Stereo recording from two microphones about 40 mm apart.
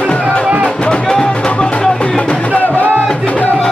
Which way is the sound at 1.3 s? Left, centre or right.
Left.